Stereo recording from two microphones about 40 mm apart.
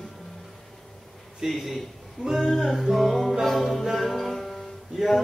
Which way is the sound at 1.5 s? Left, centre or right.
Centre.